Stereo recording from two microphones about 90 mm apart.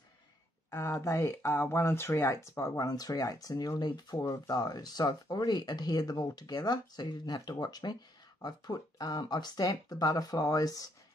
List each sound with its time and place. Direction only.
0.7 s a woman's voice: 30° left (ahead or behind)